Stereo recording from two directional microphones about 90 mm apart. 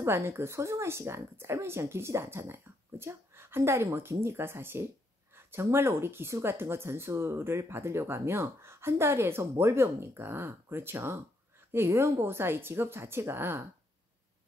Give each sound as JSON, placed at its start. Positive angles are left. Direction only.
{"t": 0.0, "sound": "speech", "side_deg": -30}